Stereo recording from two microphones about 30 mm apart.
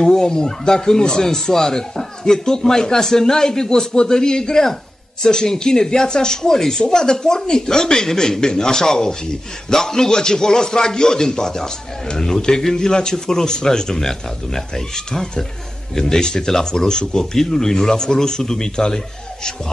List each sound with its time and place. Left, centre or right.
0.0 s speech: left